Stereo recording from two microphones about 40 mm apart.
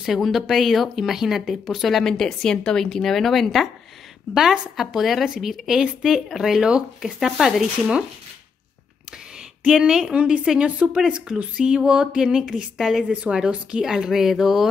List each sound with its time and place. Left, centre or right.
0.0 s a woman's voice: centre
2.0 s a woman's voice: centre
4.3 s speech: centre
9.7 s a woman's voice: centre; by 11.0 s right
11.1 s a sound: right
12.2 s a woman's voice: centre
13.1 s a sound: right
13.7 s speech: centre